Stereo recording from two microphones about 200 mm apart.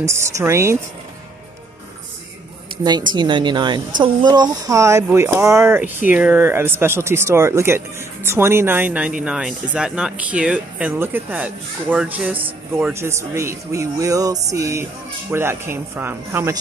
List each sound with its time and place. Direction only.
0.0 s speech: 15° right (ahead or behind)
2.8 s a woman's voice: 20° right (ahead or behind)